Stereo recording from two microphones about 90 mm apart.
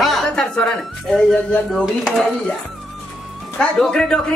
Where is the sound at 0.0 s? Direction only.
5° left (ahead or behind).